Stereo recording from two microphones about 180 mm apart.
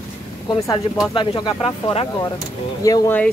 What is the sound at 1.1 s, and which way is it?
Speech, 25° left (ahead or behind).